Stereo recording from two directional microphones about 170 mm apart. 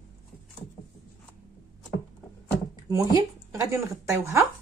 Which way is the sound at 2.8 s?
20° right (ahead or behind).